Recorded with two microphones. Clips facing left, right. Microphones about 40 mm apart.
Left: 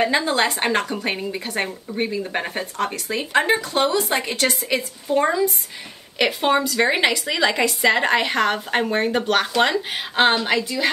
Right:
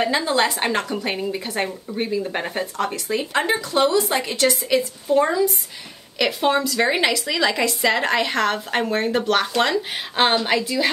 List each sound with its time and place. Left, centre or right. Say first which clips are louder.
0.3 s speech: right 1 dB; left
1.0 s a woman's voice: even; centre